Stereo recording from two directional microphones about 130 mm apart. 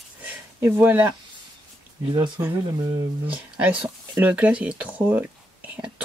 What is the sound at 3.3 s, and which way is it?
Speech, 10° right (ahead or behind).